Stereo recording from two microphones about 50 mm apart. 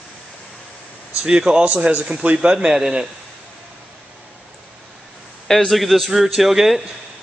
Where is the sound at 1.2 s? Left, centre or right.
Centre.